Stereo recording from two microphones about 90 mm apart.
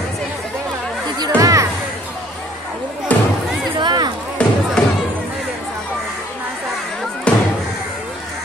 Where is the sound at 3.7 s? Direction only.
55° right (ahead or behind).